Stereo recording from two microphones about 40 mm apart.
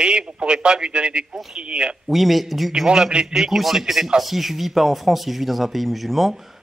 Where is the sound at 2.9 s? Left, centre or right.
Right.